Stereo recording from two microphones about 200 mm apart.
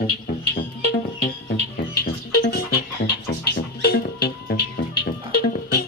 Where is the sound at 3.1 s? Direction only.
55° left (ahead or behind).